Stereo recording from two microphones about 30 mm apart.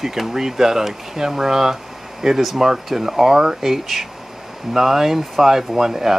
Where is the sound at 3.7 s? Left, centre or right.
Centre.